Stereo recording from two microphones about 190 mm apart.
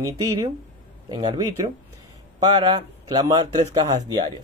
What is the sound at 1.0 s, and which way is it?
A man's voice, 20° right (ahead or behind).